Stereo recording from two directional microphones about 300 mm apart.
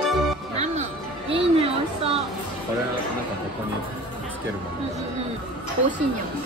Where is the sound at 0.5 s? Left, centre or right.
Right.